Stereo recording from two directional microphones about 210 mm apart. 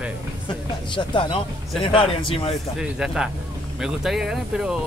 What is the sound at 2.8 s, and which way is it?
Speech, 5° right (ahead or behind).